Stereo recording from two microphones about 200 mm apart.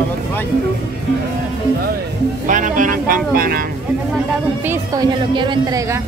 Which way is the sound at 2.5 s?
40° right (ahead or behind).